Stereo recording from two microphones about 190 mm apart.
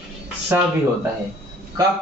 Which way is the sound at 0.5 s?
10° right (ahead or behind).